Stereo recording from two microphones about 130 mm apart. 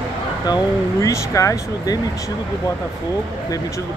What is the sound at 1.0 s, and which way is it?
Speech, 25° left (ahead or behind).